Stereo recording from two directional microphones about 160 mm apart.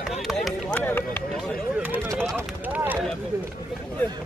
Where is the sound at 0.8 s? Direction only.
10° left (ahead or behind).